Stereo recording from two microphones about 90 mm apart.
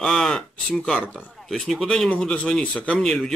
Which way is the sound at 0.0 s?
5° left (ahead or behind).